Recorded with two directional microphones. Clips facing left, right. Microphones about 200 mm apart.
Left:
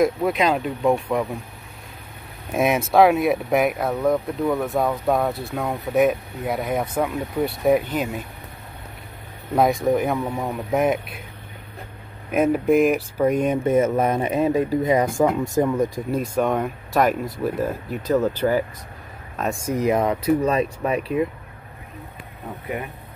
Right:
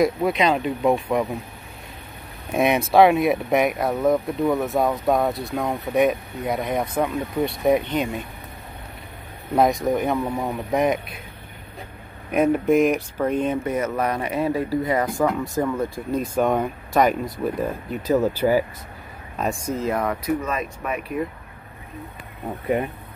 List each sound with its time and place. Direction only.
0.0 s speech: centre (ahead or behind)
2.5 s speech: centre (ahead or behind)
9.8 s speech: 5° left (ahead or behind)
10.1 s speech: 5° right (ahead or behind)
12.3 s speech: centre (ahead or behind)
13.7 s speech: 25° left (ahead or behind)
16.1 s speech: centre (ahead or behind)
18.1 s speech: 10° right (ahead or behind)
19.7 s speech: 15° left (ahead or behind)
20.2 s speech: 30° left (ahead or behind)